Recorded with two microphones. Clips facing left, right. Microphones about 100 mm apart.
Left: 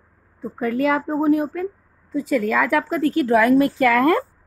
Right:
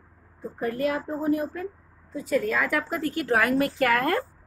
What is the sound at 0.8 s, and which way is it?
Speech, 90° left.